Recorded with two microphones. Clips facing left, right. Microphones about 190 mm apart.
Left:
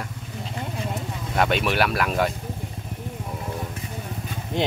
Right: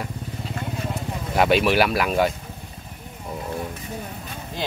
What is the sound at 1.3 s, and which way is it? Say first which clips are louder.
Speech: right 4 dB; 5° right (ahead or behind).